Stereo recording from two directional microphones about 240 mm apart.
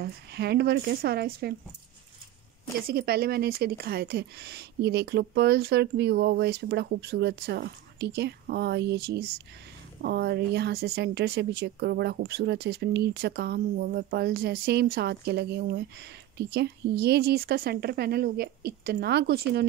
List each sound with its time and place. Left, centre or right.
0.0 s speech: right
2.9 s speech: right